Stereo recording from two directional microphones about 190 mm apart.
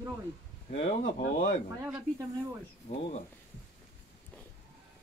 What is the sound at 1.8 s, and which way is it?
Speech, 15° right (ahead or behind).